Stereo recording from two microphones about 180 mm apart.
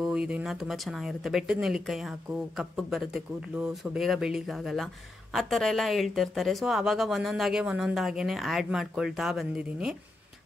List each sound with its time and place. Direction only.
0.0 s speech: 5° right (ahead or behind)